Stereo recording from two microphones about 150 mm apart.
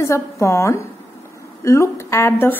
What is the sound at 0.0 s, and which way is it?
A woman's voice, 20° left (ahead or behind).